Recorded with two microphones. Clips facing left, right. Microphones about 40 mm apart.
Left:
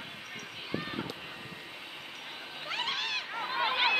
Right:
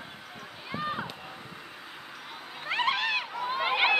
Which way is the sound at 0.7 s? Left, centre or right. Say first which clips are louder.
Right 3 dB; centre.